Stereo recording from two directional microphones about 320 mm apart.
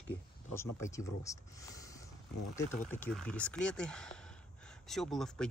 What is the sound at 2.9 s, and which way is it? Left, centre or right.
Speech, centre.